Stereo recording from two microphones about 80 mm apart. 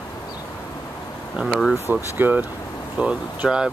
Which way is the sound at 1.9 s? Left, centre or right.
Right.